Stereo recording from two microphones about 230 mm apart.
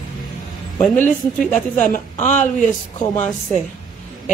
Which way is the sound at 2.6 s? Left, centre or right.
Centre.